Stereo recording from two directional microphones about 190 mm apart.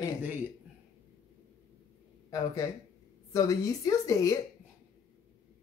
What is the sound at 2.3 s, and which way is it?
A woman's voice, 20° left (ahead or behind).